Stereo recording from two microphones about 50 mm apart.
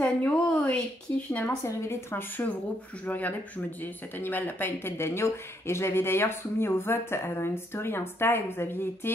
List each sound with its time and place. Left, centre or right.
0.0 s a sound: left
1.1 s speech: left
1.6 s a woman's voice: left
3.1 s speech: left